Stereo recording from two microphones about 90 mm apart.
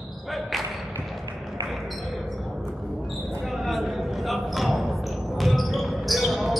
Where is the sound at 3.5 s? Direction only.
Centre (ahead or behind).